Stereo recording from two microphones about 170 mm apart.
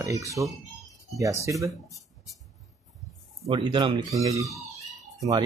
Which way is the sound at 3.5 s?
25° right (ahead or behind).